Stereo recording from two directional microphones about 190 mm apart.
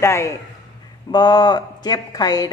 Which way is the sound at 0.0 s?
15° left (ahead or behind).